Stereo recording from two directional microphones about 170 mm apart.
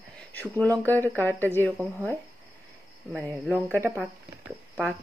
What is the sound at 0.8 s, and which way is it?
Speech, 10° left (ahead or behind).